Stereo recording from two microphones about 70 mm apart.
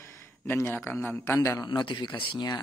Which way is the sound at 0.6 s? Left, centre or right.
Left.